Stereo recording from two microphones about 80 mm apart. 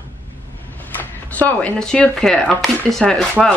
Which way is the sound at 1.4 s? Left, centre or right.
Centre.